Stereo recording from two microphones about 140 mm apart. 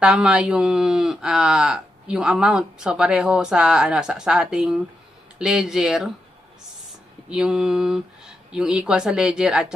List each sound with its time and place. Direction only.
0.0 s speech: 5° right (ahead or behind)
7.2 s speech: 5° right (ahead or behind)